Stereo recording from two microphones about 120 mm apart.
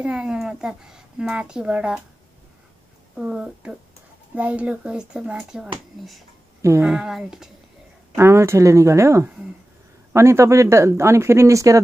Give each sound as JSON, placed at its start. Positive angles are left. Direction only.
{"t": 0.0, "sound": "speech", "side_deg": -10}
{"t": 3.2, "sound": "speech", "side_deg": -5}
{"t": 6.8, "sound": "speech", "side_deg": -5}
{"t": 8.2, "sound": "speech", "side_deg": -20}